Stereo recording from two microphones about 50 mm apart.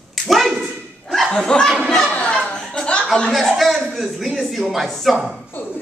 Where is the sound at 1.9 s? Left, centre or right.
Centre.